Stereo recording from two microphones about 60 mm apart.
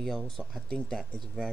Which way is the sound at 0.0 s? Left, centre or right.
Centre.